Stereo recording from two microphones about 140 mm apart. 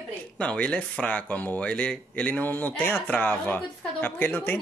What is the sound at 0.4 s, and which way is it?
Speech, 10° left (ahead or behind).